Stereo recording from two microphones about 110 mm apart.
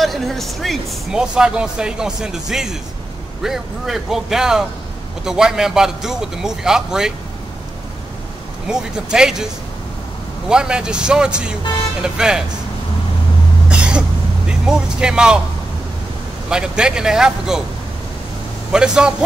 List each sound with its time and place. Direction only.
0.0 s speech: centre (ahead or behind)
8.6 s speech: 5° right (ahead or behind)
10.5 s speech: 5° right (ahead or behind)
13.7 s vehicle: 10° right (ahead or behind)
14.5 s speech: 5° right (ahead or behind)
16.4 s speech: 5° right (ahead or behind)
18.7 s speech: 5° right (ahead or behind)